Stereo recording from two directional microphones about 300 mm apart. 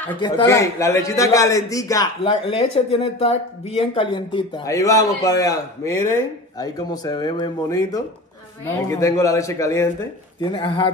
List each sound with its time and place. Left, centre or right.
0.2 s a man's voice: centre